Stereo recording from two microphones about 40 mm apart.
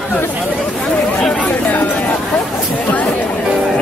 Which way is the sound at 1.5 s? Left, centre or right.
Left.